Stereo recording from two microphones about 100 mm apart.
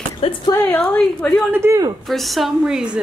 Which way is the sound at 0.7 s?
15° left (ahead or behind).